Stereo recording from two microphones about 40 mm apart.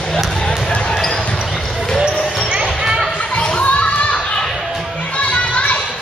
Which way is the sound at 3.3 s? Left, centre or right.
Left.